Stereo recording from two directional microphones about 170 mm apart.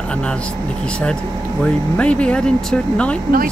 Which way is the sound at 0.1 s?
5° left (ahead or behind).